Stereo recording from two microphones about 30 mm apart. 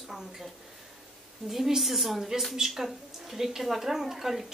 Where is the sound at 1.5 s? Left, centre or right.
Centre.